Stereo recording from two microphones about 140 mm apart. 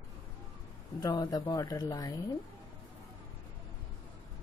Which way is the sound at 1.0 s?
30° left (ahead or behind).